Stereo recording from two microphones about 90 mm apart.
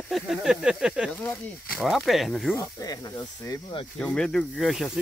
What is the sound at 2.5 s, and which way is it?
Speech, 45° left (ahead or behind).